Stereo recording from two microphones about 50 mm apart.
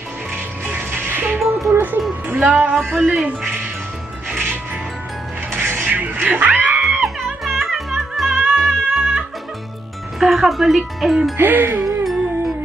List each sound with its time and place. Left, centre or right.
0.7 s music: right
1.7 s a sound: right
2.5 s speech: right
4.3 s music: right
6.8 s music: centre
10.1 s speech: centre
11.3 s speech: right
11.8 s music: centre